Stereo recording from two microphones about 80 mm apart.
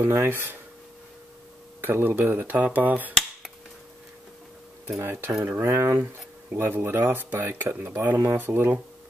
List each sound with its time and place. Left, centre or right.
0.0 s speech: right
1.8 s speech: right
4.9 s speech: right